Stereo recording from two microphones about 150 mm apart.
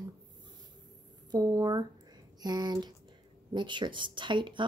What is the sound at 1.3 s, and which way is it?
Speech, 25° right (ahead or behind).